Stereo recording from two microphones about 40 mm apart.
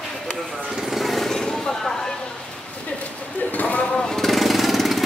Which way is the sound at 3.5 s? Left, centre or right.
Left.